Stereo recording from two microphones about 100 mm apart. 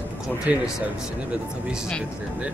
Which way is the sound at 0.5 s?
15° right (ahead or behind).